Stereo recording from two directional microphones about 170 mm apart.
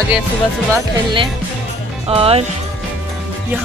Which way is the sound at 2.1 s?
35° right (ahead or behind).